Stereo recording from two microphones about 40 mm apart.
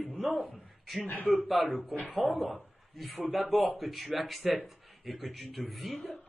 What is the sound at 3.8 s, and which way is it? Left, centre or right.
Speech, centre.